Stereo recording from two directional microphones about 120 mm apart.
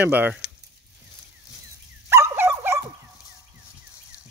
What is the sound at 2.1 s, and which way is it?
Dog, 25° right (ahead or behind).